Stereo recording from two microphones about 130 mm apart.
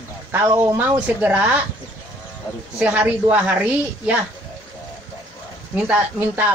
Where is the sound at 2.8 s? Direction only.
10° right (ahead or behind).